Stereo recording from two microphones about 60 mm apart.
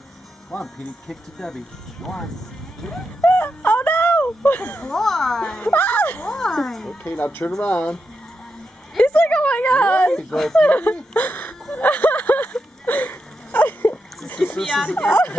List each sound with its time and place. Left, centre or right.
0.5 s speech: centre
3.2 s wail: left
4.8 s speech: centre
5.6 s speech: left
6.3 s a sound: centre
7.1 s speech: left
9.0 s a sound: left
10.3 s speech: centre
10.6 s speech: left
11.8 s a sound: left
14.2 s a sound: centre
14.9 s speech: left